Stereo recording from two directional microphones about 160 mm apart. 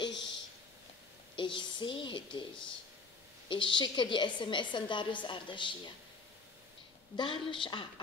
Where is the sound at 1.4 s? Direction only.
30° left (ahead or behind).